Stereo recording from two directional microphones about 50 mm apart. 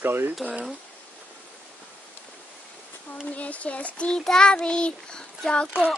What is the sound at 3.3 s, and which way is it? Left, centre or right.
Speech, left.